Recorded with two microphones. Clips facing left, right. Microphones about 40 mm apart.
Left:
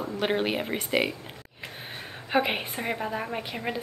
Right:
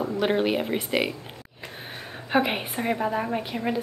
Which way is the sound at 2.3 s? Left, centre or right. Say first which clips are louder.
Right 2 dB; centre.